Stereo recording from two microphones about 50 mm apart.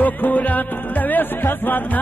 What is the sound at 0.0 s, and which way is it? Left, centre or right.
Music, left.